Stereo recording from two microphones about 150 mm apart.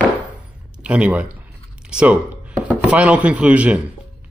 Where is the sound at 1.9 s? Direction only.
5° right (ahead or behind).